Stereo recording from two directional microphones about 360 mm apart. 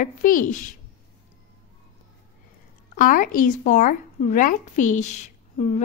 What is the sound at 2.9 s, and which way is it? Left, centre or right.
Speech, left.